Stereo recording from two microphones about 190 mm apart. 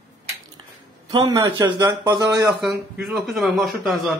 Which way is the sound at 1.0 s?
20° right (ahead or behind).